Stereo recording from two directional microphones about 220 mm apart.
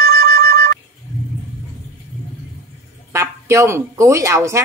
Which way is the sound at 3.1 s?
15° right (ahead or behind).